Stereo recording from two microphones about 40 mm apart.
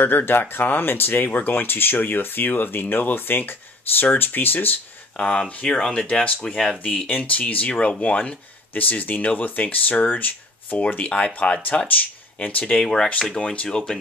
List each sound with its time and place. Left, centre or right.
0.0 s speech: left
1.5 s speech: left
5.7 s speech: centre
6.8 s speech: left
7.7 s speech: left
8.0 s speech: left
11.1 s speech: left
12.7 s speech: centre
13.4 s speech: left
13.7 s speech: centre